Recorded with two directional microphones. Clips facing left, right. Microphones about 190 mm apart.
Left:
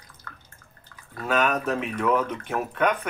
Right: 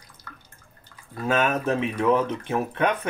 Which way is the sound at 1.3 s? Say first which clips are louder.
Right 1 dB; 25° right (ahead or behind).